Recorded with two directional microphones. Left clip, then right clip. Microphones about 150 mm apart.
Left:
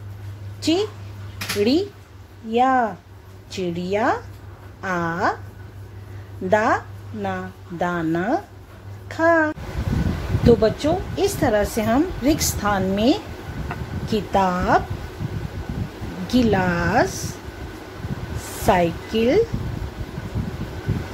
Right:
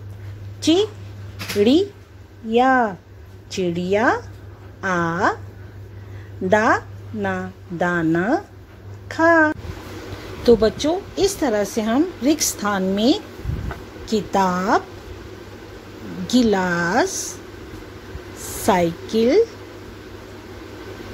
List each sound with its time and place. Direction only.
0.6 s a sound: 30° right (ahead or behind)
1.6 s a woman's voice: 30° right (ahead or behind)
6.5 s a woman's voice: 30° right (ahead or behind)
16.3 s a woman's voice: 25° right (ahead or behind)
18.6 s a woman's voice: 25° right (ahead or behind)